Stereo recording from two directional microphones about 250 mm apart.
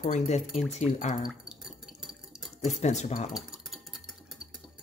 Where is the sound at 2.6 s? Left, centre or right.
Left.